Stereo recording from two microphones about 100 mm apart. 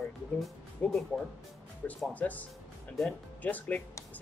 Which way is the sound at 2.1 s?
15° left (ahead or behind).